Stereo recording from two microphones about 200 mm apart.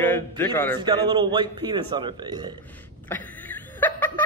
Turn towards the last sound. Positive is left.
turn(degrees=10)  # may be behind; listen again after turning